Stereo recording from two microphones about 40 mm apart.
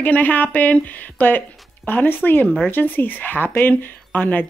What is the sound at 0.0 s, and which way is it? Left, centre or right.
A woman's voice, left.